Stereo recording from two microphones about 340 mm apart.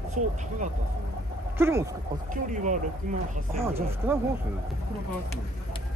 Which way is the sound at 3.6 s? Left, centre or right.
Centre.